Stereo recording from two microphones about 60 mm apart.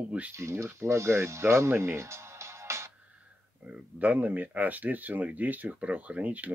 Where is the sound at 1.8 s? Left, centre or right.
Right.